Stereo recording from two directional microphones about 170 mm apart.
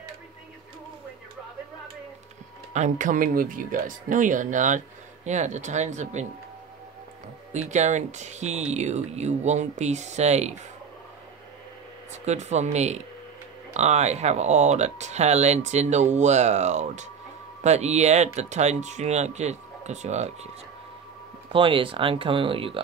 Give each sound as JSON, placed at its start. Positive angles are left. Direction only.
{"t": 2.7, "sound": "speech", "side_deg": -45}
{"t": 7.5, "sound": "speech", "side_deg": -45}
{"t": 12.1, "sound": "speech", "side_deg": -40}
{"t": 21.5, "sound": "speech", "side_deg": -30}